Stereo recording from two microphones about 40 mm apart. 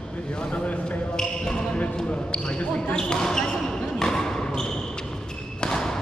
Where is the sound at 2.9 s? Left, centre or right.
Centre.